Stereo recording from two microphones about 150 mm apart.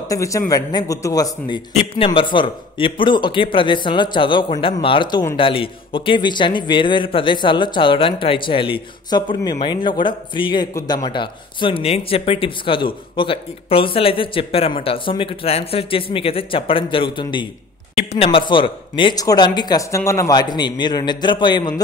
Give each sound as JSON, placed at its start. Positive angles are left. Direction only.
{"t": 0.1, "sound": "speech", "side_deg": 20}
{"t": 17.9, "sound": "speech", "side_deg": 40}